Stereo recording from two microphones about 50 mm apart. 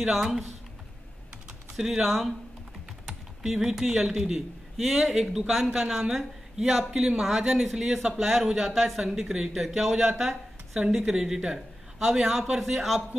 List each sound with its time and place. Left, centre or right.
0.0 s speech: centre
1.8 s speech: centre